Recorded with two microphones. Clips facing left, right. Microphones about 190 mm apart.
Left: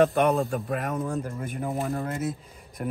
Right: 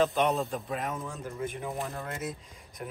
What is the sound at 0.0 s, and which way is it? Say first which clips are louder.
A man's voice: left 5 dB; 60° left (ahead or behind).